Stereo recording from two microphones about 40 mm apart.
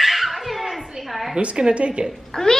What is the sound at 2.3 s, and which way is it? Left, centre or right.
Speech, centre.